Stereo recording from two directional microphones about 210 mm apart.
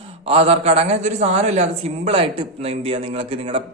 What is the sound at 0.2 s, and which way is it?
A man's voice, 30° right (ahead or behind).